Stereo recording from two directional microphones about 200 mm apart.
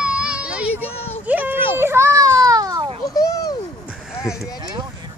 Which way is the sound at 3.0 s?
15° left (ahead or behind).